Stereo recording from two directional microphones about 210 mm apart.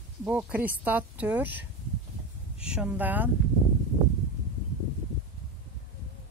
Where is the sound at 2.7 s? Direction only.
5° right (ahead or behind).